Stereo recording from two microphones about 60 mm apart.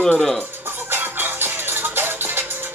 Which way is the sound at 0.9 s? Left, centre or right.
Right.